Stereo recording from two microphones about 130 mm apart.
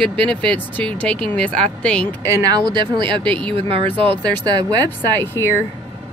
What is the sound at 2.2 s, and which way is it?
Speech, 25° right (ahead or behind).